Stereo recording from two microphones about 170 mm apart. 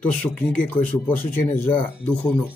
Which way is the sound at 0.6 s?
10° left (ahead or behind).